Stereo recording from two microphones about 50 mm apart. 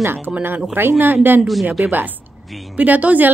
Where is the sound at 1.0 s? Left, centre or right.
Right.